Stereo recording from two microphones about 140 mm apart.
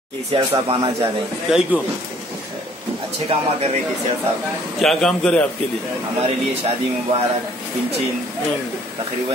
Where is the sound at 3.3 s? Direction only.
45° right (ahead or behind).